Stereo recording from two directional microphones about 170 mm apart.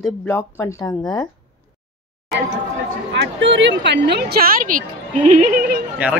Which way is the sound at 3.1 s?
90° right.